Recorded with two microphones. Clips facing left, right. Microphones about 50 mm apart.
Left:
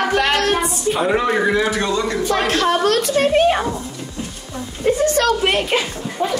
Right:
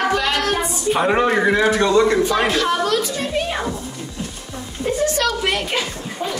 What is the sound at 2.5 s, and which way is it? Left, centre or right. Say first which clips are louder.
A woman's voice: left 2 dB; left.